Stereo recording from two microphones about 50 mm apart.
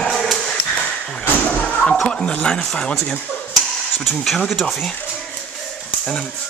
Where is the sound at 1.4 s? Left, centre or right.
Left.